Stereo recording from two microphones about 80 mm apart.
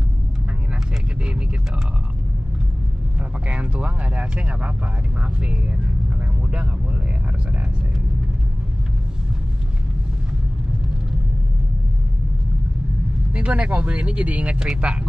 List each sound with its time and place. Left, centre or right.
3.2 s speech: centre
13.3 s speech: centre